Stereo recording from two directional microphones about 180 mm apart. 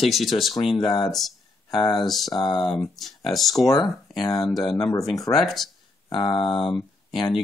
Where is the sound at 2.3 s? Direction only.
25° left (ahead or behind).